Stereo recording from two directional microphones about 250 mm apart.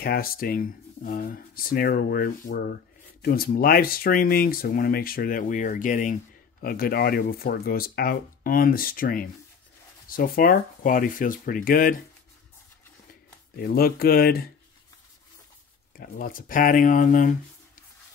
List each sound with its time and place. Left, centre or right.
0.0 s speech: left
13.6 s speech: left
16.0 s speech: left